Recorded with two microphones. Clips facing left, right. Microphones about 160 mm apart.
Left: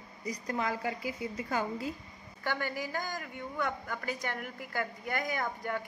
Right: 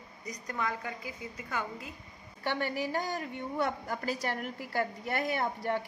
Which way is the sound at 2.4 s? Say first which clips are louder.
Right 3 dB; 25° right (ahead or behind).